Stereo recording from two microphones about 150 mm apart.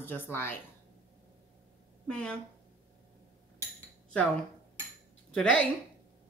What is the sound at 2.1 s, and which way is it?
Speech, 5° left (ahead or behind).